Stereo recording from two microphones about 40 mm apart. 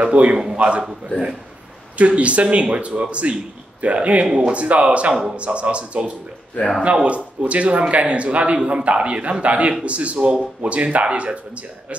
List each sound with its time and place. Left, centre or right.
0.0 s speech: right
2.0 s speech: right
8.5 s speech: right